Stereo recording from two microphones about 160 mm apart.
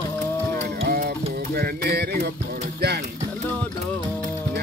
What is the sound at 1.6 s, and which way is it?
Mantra, 75° right (ahead or behind).